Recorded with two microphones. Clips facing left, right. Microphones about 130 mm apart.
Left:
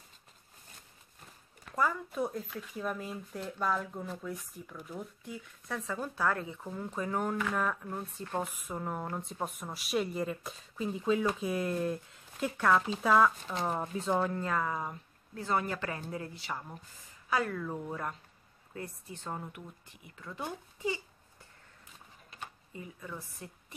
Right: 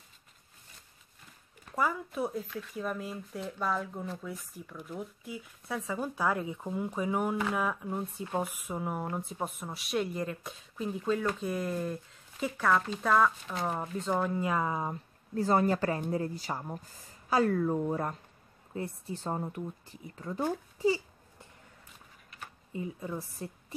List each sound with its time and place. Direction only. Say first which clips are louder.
1.8 s speech: even; 5° right (ahead or behind)
14.5 s a woman's voice: right 2 dB; 20° right (ahead or behind)
15.3 s speech: right 6 dB; 35° right (ahead or behind)
22.7 s a woman's voice: right 9 dB; 25° right (ahead or behind)